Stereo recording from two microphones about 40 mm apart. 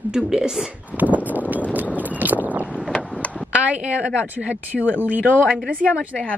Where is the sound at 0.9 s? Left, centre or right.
Right.